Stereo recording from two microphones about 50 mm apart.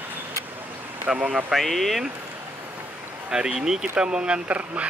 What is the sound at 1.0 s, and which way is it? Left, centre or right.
Speech, right.